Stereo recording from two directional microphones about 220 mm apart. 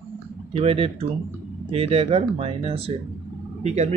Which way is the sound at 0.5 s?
25° right (ahead or behind).